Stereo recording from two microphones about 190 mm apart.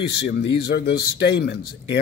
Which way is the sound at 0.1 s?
65° left (ahead or behind).